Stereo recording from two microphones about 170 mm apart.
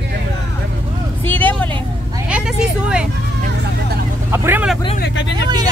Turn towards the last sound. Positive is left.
turn(degrees=85)